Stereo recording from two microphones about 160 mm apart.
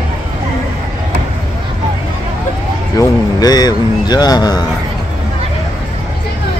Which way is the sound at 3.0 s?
25° left (ahead or behind).